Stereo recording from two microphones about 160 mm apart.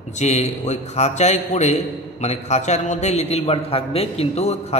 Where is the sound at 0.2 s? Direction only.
45° left (ahead or behind).